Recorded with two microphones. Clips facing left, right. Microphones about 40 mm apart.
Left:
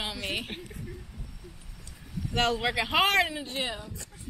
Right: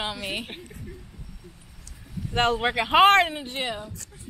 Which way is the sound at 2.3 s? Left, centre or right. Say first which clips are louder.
Right 4 dB; centre.